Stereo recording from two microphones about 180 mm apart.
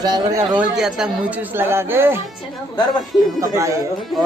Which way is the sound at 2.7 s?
25° left (ahead or behind).